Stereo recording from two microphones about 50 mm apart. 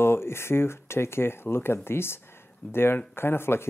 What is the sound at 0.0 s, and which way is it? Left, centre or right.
Speech, left.